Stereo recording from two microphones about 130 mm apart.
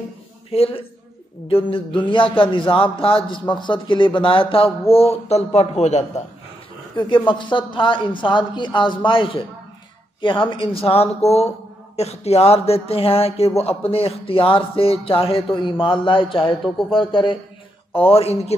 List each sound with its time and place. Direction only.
0.5 s a man's voice: 50° left (ahead or behind)
7.0 s a man's voice: 40° left (ahead or behind)